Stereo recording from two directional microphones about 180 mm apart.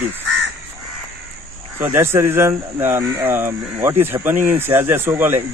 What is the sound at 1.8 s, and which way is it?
Speech, 15° right (ahead or behind).